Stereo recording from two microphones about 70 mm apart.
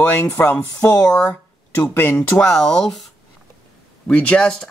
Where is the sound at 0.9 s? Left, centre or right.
Centre.